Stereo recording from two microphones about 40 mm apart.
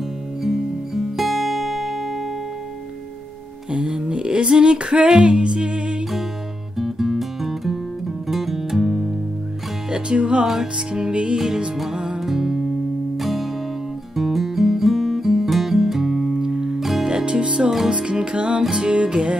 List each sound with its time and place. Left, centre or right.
0.4 s guitar: centre
3.7 s music: right
6.8 s music: centre
9.8 s music: right
10.4 s music: centre
10.9 s music: right
16.8 s music: centre
17.1 s music: right